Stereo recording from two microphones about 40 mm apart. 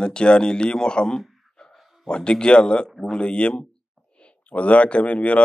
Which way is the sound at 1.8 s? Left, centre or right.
Centre.